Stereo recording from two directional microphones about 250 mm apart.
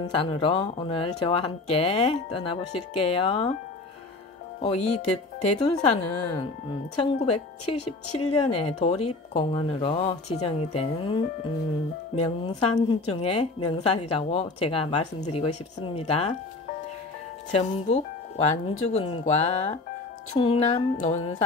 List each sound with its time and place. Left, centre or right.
0.1 s speech: left
4.6 s speech: left
12.2 s speech: left
17.5 s speech: left